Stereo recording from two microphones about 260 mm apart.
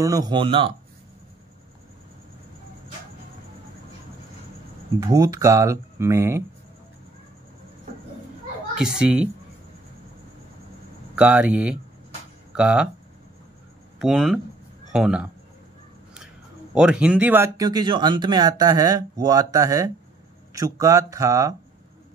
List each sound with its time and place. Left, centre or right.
0.0 s speech: centre
5.0 s speech: centre
8.7 s speech: centre
11.1 s speech: centre
13.9 s speech: centre
16.7 s speech: centre